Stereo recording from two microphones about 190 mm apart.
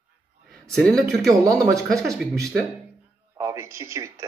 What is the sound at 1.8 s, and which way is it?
Speech, centre (ahead or behind).